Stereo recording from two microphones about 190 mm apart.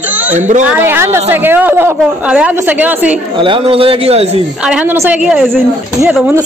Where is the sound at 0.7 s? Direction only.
10° right (ahead or behind).